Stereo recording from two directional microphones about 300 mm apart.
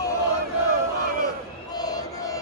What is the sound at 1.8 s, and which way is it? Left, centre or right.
Crowd, centre.